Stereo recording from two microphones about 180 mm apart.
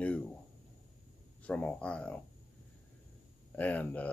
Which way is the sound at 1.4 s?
5° left (ahead or behind).